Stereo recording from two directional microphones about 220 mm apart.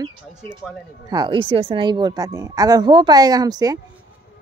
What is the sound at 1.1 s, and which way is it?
A woman's voice, 20° right (ahead or behind).